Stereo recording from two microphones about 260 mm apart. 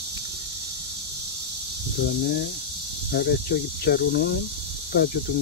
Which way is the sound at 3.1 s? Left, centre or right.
Left.